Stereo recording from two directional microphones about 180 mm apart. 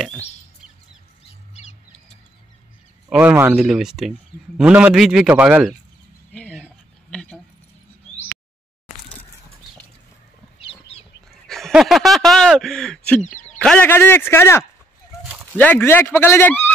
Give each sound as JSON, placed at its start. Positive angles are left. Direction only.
{"t": 1.5, "sound": "bird", "side_deg": 40}
{"t": 3.1, "sound": "a man's voice", "side_deg": -10}
{"t": 7.1, "sound": "a sound", "side_deg": 5}
{"t": 11.4, "sound": "a sound", "side_deg": 0}
{"t": 13.2, "sound": "speech", "side_deg": 45}
{"t": 13.6, "sound": "speech", "side_deg": 5}